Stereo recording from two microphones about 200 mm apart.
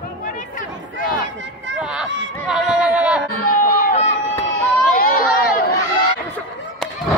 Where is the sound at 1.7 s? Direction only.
5° right (ahead or behind).